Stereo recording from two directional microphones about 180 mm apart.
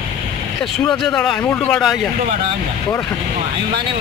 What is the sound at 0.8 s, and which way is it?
Speech, 5° left (ahead or behind).